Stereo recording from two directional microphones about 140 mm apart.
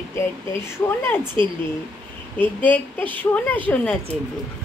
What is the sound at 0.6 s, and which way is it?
Speech, 15° left (ahead or behind).